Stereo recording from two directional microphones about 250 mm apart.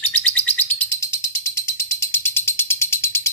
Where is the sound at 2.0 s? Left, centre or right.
Centre.